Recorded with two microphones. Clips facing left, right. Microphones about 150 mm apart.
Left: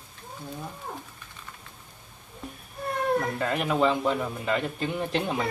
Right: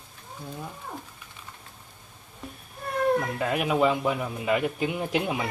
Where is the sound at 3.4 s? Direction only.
10° right (ahead or behind).